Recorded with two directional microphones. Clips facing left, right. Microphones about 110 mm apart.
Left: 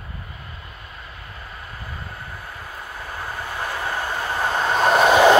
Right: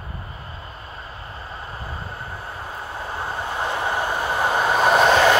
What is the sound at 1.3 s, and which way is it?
Train, 30° right (ahead or behind).